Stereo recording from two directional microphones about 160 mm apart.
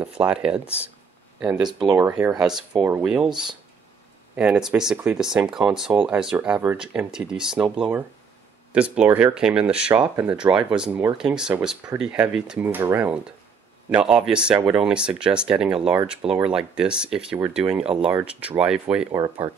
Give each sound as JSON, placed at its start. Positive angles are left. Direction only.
{"t": 0.0, "sound": "speech", "side_deg": -5}
{"t": 1.6, "sound": "speech", "side_deg": -25}
{"t": 2.0, "sound": "speech", "side_deg": -15}
{"t": 3.3, "sound": "speech", "side_deg": -25}
{"t": 4.4, "sound": "speech", "side_deg": -5}